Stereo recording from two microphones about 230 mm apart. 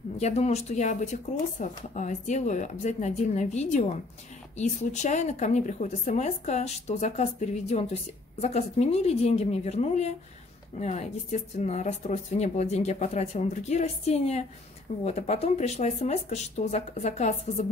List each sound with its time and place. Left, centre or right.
0.2 s a woman's voice: left